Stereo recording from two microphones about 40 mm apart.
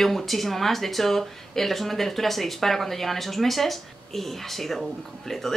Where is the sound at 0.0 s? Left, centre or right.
Centre.